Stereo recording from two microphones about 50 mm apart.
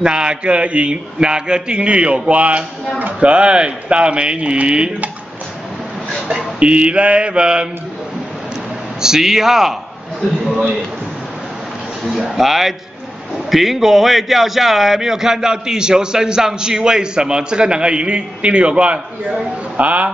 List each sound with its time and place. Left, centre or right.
0.0 s a man's voice: centre
6.2 s a man's voice: centre
9.0 s a man's voice: centre
12.2 s a man's voice: centre; by 20.1 s right